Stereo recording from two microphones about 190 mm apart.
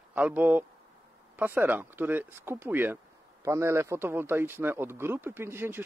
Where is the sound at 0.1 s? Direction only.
10° right (ahead or behind).